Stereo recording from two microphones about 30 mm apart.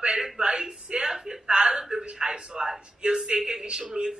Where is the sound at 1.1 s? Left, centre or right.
Centre.